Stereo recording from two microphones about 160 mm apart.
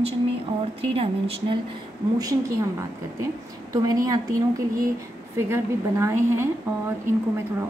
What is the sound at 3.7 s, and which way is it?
Speech, 20° right (ahead or behind).